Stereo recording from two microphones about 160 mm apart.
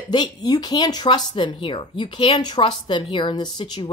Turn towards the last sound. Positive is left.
turn(degrees=30)  # may be behind; listen again after turning